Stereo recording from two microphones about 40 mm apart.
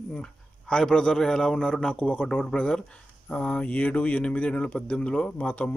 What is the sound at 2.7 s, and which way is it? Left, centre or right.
Speech, left.